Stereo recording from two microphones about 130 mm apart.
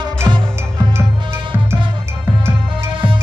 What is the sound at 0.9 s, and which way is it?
Music, 20° right (ahead or behind).